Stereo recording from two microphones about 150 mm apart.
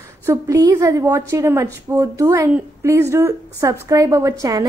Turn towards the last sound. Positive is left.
turn(degrees=-25)  # may be behind; listen again after turning